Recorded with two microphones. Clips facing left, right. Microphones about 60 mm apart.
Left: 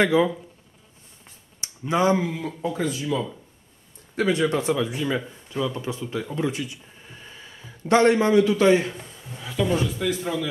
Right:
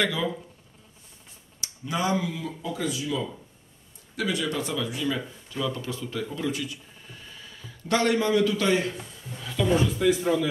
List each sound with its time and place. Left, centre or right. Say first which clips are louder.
0.0 s speech: left 7 dB; left
1.6 s speech: left 6 dB; left
9.3 s speech: left 2 dB; centre
9.7 s a man's voice: right 5 dB; centre